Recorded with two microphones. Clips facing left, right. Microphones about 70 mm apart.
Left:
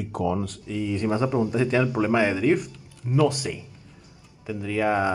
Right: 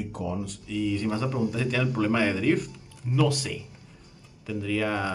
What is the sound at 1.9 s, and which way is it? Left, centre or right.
A man's voice, centre.